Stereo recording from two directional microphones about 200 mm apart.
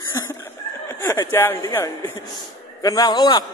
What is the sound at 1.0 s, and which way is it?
A man's voice, 15° left (ahead or behind).